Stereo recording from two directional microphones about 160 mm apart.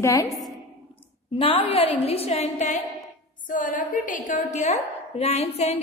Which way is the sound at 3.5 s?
55° left (ahead or behind).